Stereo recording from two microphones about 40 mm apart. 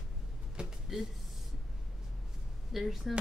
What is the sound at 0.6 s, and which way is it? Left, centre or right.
Speech, right.